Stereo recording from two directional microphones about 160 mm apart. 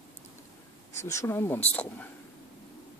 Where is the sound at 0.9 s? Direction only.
20° left (ahead or behind).